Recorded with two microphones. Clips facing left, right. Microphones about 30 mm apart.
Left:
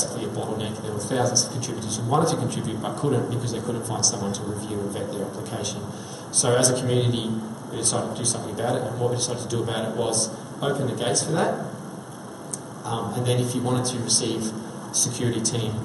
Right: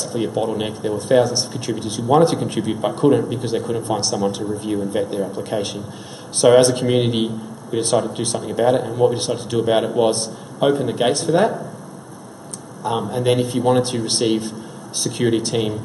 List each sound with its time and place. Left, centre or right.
0.4 s speech: right
0.8 s a man's voice: right
6.4 s a man's voice: right
13.1 s a man's voice: right